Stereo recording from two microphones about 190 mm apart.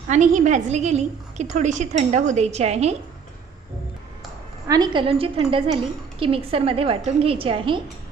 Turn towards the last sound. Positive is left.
turn(degrees=-25)  # may be behind; listen again after turning